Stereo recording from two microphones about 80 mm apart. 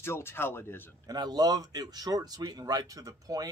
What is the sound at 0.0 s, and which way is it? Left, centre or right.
Speech, left.